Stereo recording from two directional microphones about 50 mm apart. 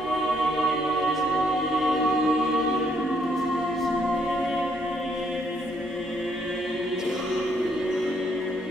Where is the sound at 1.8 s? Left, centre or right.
Centre.